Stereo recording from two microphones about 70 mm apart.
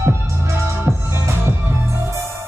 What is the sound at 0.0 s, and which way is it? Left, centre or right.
Music, right.